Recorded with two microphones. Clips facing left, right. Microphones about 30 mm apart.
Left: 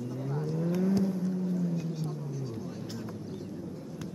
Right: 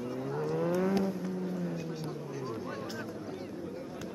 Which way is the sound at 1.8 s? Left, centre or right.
Centre.